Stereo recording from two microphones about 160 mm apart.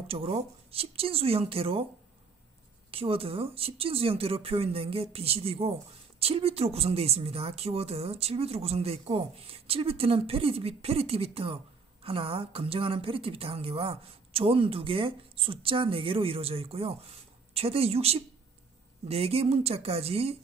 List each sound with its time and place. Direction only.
0.0 s speech: 40° right (ahead or behind)
2.9 s speech: 35° right (ahead or behind)